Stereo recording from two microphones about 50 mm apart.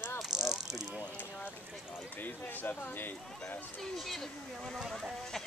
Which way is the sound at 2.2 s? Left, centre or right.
Left.